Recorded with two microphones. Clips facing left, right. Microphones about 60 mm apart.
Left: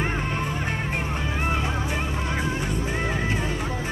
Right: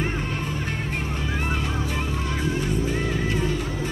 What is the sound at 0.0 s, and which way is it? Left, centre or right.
Music, left.